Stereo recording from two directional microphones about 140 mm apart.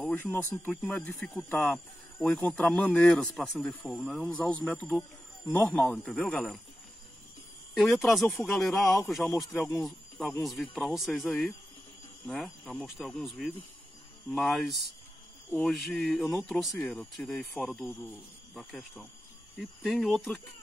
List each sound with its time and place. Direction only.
0.0 s speech: 10° left (ahead or behind)
7.7 s speech: centre (ahead or behind)